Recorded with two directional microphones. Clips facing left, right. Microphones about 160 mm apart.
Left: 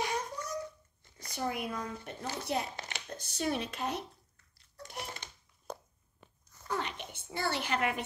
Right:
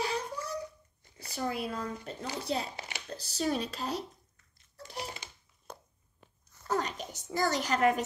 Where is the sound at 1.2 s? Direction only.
30° right (ahead or behind).